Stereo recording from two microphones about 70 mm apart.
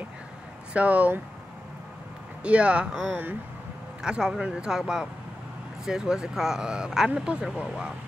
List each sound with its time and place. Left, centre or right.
0.7 s speech: right
2.4 s speech: centre
3.1 s speech: right
4.0 s speech: centre